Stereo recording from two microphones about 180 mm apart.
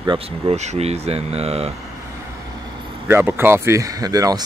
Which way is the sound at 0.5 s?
40° right (ahead or behind).